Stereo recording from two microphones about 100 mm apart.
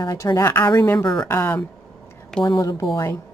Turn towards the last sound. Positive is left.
turn(degrees=35)  # may be behind; listen again after turning